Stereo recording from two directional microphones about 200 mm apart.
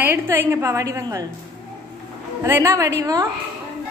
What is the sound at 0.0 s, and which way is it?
A woman's voice, 10° right (ahead or behind).